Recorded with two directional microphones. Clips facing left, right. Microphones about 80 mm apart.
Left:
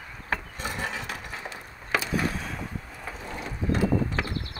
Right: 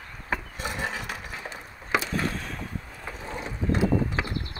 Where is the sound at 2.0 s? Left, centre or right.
Centre.